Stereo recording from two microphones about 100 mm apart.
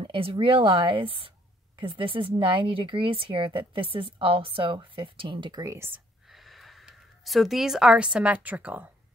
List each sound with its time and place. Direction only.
0.0 s speech: 65° right (ahead or behind)
5.6 s speech: 25° right (ahead or behind)
6.2 s speech: centre (ahead or behind)